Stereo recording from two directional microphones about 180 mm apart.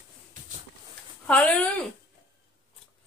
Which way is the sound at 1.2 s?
5° left (ahead or behind).